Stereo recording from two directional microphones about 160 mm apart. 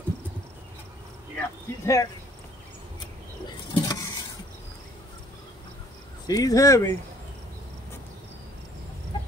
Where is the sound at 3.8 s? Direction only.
20° left (ahead or behind).